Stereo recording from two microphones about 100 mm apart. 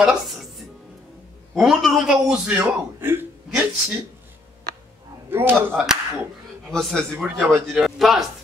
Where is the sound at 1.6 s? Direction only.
Centre (ahead or behind).